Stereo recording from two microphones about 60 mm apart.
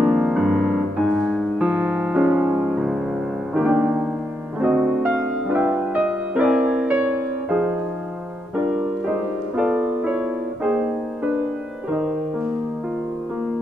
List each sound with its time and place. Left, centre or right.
0.0 s music: centre
1.6 s music: centre
2.7 s music: centre